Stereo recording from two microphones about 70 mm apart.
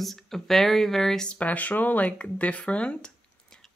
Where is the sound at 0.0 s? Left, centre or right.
Centre.